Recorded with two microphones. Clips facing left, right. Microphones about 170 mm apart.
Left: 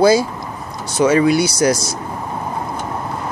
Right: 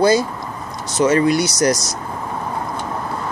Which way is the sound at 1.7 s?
30° left (ahead or behind).